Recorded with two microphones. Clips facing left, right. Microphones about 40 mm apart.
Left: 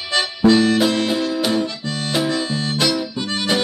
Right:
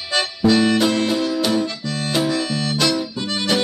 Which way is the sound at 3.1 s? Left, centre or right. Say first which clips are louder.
Even; centre.